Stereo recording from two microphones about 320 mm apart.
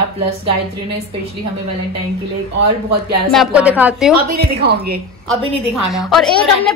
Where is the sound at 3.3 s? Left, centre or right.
Centre.